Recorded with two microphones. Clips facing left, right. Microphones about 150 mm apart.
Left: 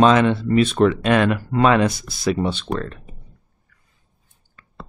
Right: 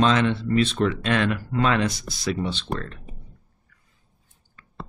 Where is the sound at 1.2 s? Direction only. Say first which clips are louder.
Left 6 dB; 55° left (ahead or behind).